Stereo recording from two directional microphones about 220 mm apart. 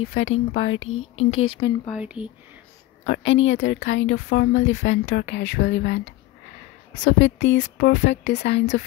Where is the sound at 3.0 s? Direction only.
55° left (ahead or behind).